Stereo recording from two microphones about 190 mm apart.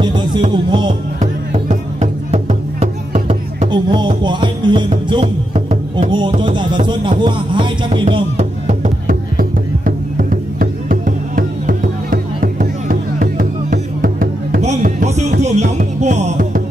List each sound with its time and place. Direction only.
0.0 s music: 25° right (ahead or behind)
1.2 s music: 40° right (ahead or behind)
14.6 s music: 40° right (ahead or behind)